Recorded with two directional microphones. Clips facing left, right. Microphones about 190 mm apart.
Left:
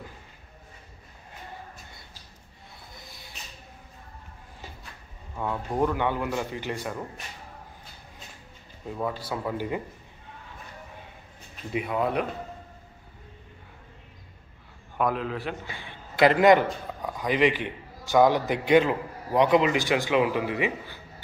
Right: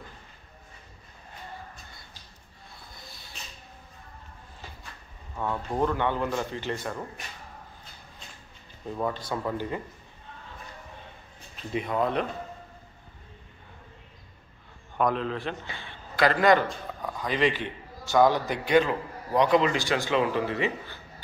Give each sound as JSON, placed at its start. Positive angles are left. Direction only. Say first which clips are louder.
{"t": 3.0, "sound": "a sound", "louder": "left 1 dB", "side_deg": 15}
{"t": 5.4, "sound": "a man's voice", "louder": "left 1 dB", "side_deg": 10}
{"t": 8.8, "sound": "a man's voice", "louder": "right 1 dB", "side_deg": 5}
{"t": 11.7, "sound": "a man's voice", "louder": "even", "side_deg": 10}
{"t": 15.0, "sound": "a man's voice", "louder": "right 1 dB", "side_deg": 10}